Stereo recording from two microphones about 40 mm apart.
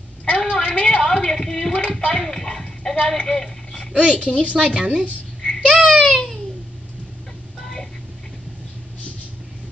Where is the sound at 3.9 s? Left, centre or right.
Centre.